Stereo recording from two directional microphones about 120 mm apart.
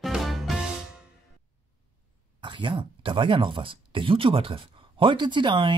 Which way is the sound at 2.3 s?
40° right (ahead or behind).